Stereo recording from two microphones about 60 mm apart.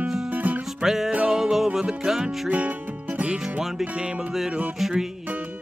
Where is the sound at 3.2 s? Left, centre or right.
Centre.